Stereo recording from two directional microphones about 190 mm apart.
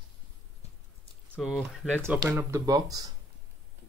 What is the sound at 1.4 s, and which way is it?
Speech, centre (ahead or behind).